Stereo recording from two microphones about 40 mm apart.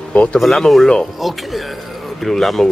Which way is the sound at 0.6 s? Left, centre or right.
Centre.